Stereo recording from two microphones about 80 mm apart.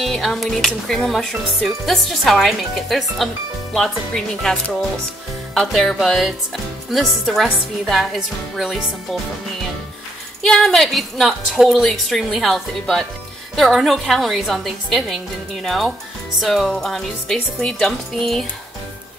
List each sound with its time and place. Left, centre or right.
0.0 s a woman's voice: centre
10.4 s a woman's voice: centre